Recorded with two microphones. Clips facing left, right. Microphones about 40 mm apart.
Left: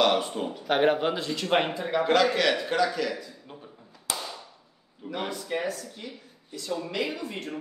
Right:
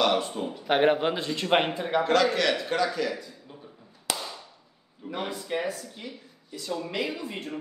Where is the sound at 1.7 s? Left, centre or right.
Right.